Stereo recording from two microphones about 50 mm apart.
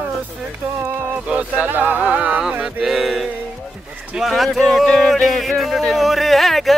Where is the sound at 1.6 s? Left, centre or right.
Right.